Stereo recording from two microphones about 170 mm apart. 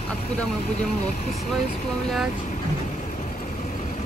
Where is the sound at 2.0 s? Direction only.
Centre (ahead or behind).